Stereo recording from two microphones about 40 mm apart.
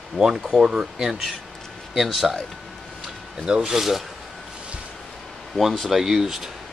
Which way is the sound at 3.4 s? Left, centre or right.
Centre.